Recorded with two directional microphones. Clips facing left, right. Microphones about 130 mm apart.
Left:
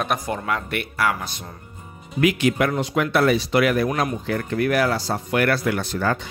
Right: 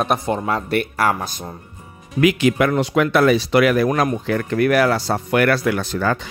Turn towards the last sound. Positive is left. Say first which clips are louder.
# right 2 dB
turn(degrees=-90)